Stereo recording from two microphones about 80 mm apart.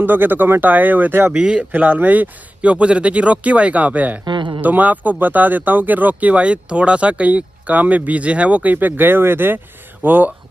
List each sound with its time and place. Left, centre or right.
0.0 s speech: right
1.3 s speech: centre
1.7 s speech: right
4.2 s a sound: right
4.6 s a man's voice: right